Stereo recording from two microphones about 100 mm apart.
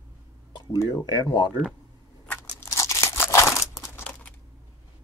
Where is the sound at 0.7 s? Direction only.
40° left (ahead or behind).